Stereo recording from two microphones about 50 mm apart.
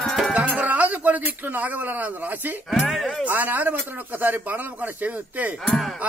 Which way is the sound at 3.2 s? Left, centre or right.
Right.